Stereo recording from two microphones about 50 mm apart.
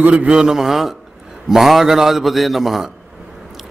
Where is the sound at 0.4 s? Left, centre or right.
Centre.